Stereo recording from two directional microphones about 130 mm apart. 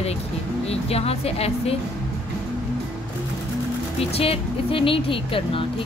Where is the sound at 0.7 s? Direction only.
50° left (ahead or behind).